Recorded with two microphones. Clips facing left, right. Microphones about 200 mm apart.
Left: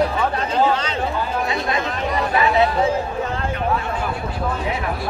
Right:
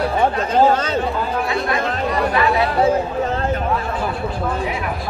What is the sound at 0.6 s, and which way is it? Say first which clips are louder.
Speech: right 4 dB; 45° right (ahead or behind).